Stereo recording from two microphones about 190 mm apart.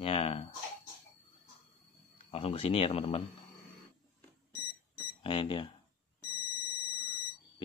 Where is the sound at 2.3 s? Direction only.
30° left (ahead or behind).